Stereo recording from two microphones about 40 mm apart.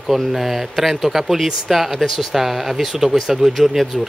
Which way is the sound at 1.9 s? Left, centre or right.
Centre.